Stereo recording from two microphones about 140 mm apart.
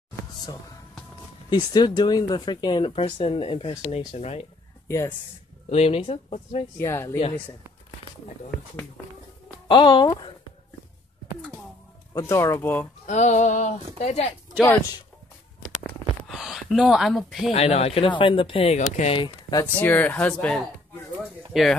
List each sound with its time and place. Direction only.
1.5 s speech: 30° left (ahead or behind); by 4.5 s 45° left (ahead or behind)
4.8 s speech: 20° left (ahead or behind)
5.7 s speech: 45° left (ahead or behind)
6.8 s speech: 20° left (ahead or behind)
9.7 s speech: 35° left (ahead or behind)
12.1 s speech: 20° left (ahead or behind)
13.0 s speech: 55° left (ahead or behind)
16.3 s speech: centre (ahead or behind)
17.5 s speech: 45° left (ahead or behind)
18.8 s speech: 55° left (ahead or behind)
19.1 s speech: 35° left (ahead or behind)
19.8 s speech: 10° left (ahead or behind)